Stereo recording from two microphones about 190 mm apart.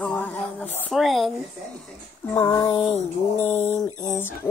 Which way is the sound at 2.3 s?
15° left (ahead or behind).